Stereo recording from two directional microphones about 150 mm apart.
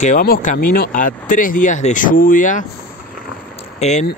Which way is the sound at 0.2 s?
70° left (ahead or behind).